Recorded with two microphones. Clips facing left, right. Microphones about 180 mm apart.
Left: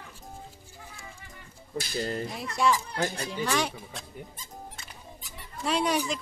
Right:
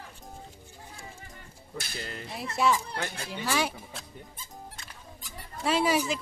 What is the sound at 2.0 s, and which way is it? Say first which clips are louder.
Speech: left 10 dB; 40° left (ahead or behind).